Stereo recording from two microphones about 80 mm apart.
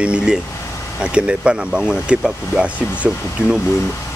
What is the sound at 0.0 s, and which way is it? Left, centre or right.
Speech, centre.